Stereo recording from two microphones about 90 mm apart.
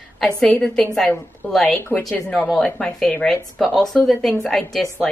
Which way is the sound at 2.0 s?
5° left (ahead or behind).